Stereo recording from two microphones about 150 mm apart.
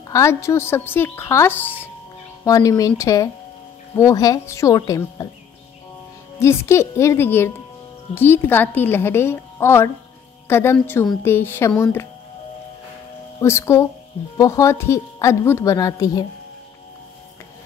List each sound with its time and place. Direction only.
0.1 s a woman's voice: 20° left (ahead or behind)
2.4 s a woman's voice: 25° left (ahead or behind)
6.4 s a woman's voice: 20° left (ahead or behind)
13.4 s a woman's voice: 15° left (ahead or behind)